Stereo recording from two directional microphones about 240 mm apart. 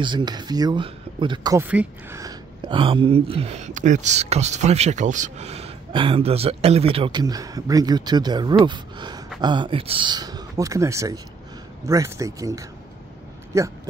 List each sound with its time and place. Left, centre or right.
0.0 s speech: centre